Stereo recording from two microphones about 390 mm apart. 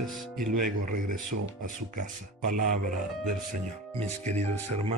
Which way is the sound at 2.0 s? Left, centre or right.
Right.